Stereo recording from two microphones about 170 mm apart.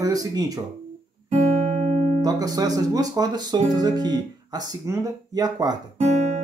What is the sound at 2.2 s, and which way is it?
Speech, 20° right (ahead or behind).